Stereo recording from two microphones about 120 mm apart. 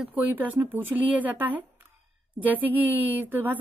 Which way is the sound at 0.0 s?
10° right (ahead or behind).